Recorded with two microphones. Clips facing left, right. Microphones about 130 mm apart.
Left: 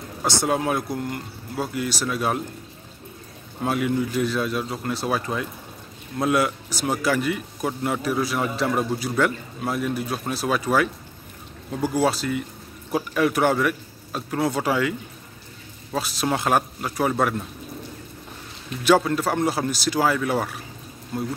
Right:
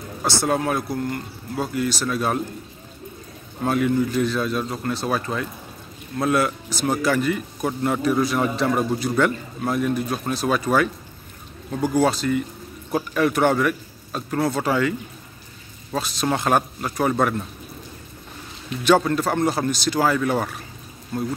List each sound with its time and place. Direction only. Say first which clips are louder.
0.2 s speech: right 1 dB; 15° left (ahead or behind)
3.6 s speech: right 3 dB; 10° left (ahead or behind)
18.9 s speech: right 1 dB; 5° left (ahead or behind)